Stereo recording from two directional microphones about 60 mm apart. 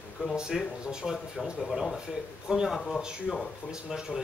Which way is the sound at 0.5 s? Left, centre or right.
Centre.